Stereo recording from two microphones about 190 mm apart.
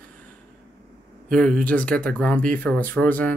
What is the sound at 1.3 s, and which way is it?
Speech, 5° left (ahead or behind).